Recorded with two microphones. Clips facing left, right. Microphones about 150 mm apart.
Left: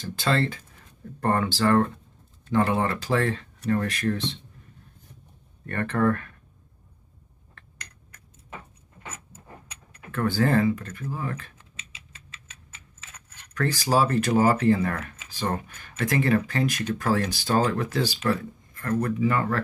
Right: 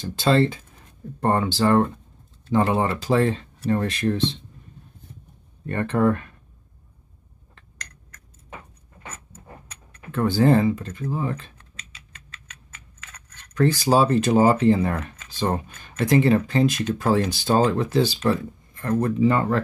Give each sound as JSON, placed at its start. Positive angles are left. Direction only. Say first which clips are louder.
{"t": 0.1, "sound": "speech", "louder": "right 6 dB", "side_deg": -20}
{"t": 5.7, "sound": "speech", "louder": "right 3 dB", "side_deg": -20}
{"t": 10.1, "sound": "speech", "louder": "right 4 dB", "side_deg": -20}
{"t": 12.4, "sound": "typing", "louder": "right 3 dB", "side_deg": -60}
{"t": 13.6, "sound": "speech", "louder": "right 5 dB", "side_deg": -20}